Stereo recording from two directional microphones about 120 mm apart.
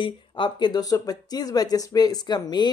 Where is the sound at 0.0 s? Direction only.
40° left (ahead or behind).